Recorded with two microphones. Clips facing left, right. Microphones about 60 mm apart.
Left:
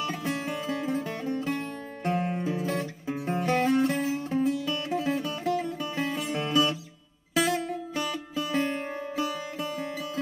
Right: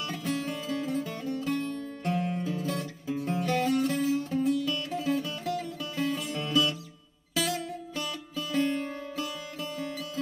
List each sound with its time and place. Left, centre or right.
0.0 s music: left